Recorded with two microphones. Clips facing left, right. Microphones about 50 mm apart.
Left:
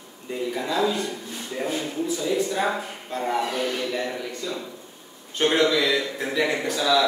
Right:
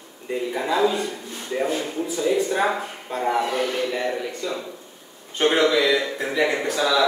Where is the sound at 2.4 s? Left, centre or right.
Right.